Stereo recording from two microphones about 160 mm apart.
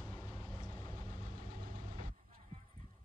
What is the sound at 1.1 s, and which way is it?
Vehicle, 60° right (ahead or behind).